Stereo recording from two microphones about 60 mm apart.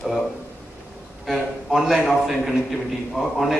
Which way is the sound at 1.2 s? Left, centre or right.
Centre.